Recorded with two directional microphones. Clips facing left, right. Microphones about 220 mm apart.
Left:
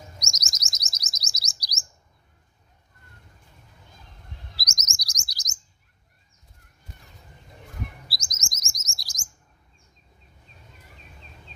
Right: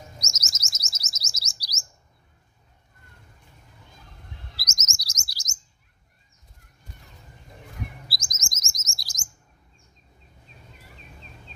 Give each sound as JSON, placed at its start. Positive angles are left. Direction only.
{"t": 0.2, "sound": "chirp", "side_deg": 15}
{"t": 4.6, "sound": "chirp", "side_deg": 15}
{"t": 8.1, "sound": "chirp", "side_deg": 0}